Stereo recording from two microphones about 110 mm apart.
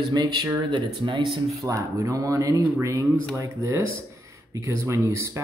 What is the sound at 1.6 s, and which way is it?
Speech, 30° right (ahead or behind).